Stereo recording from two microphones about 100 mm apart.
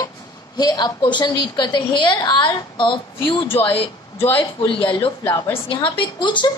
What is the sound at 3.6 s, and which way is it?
A man's voice, 70° left (ahead or behind).